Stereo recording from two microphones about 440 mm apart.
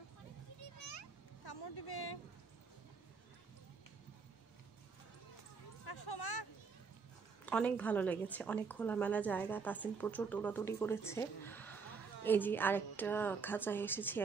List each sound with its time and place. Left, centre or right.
0.7 s children playing: left
1.4 s vehicle: left
5.9 s a sound: left
7.4 s a woman's voice: centre